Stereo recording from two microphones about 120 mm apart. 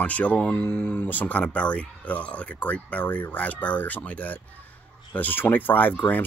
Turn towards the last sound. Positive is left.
turn(degrees=15)  # may be behind; listen again after turning